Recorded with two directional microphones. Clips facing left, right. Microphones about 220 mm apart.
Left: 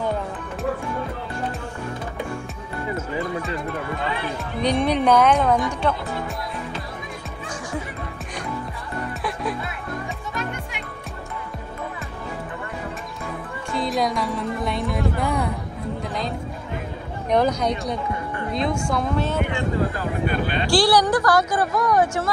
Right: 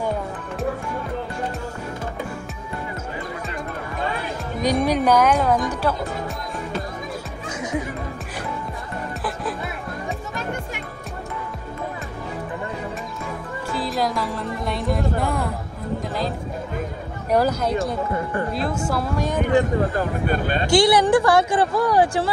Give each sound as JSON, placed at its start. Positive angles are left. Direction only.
{"t": 4.6, "sound": "speech", "side_deg": -10}
{"t": 9.2, "sound": "music", "side_deg": 0}
{"t": 13.7, "sound": "speech", "side_deg": 0}
{"t": 17.3, "sound": "speech", "side_deg": -5}
{"t": 20.2, "sound": "speech", "side_deg": -45}
{"t": 20.7, "sound": "speech", "side_deg": -25}